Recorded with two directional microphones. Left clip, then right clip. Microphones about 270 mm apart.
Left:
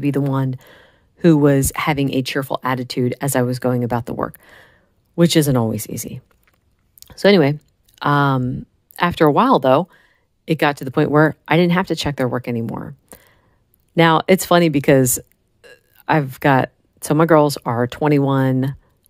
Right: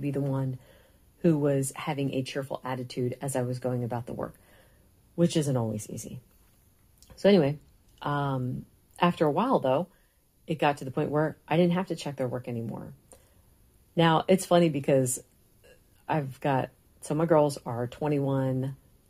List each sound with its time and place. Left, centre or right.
0.0 s speech: left